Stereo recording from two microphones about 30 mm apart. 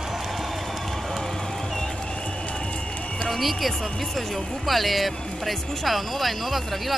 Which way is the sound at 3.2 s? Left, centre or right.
Centre.